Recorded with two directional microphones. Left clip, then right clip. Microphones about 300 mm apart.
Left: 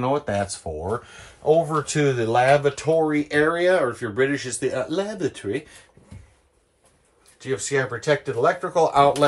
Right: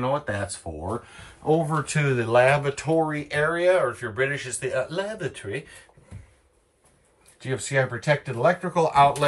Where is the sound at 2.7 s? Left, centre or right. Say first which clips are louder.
Left 3 dB; left.